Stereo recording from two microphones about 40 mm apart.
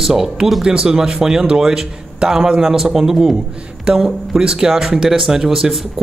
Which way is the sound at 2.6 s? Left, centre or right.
Centre.